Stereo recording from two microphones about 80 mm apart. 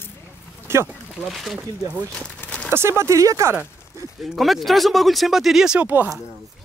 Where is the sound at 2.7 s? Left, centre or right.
Right.